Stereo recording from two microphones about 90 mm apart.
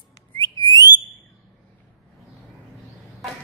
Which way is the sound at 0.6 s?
50° left (ahead or behind).